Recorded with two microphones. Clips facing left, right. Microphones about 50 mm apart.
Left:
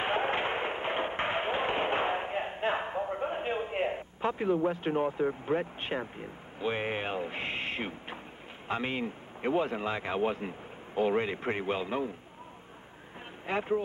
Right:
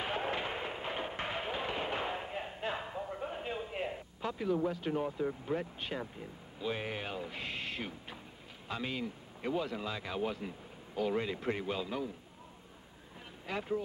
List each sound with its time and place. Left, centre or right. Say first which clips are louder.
0.0 s a sound: left 6 dB; left
4.6 s speech: left 5 dB; left
13.5 s speech: left 6 dB; left